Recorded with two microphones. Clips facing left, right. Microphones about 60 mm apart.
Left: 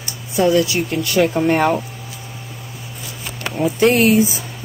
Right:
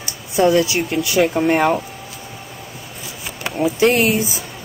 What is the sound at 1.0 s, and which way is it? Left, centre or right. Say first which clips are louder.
Speech: left 1 dB; centre.